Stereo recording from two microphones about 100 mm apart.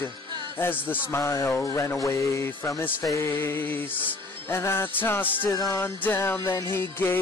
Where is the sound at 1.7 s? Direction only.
30° left (ahead or behind).